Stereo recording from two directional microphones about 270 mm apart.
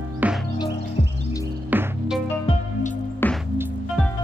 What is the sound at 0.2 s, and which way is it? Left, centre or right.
Music, centre.